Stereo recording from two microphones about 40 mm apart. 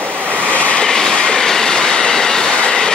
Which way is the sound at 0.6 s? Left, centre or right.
Left.